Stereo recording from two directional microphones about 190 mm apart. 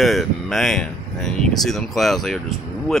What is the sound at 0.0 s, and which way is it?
Speech, centre (ahead or behind).